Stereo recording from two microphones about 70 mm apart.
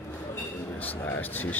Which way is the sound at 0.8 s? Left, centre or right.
Left.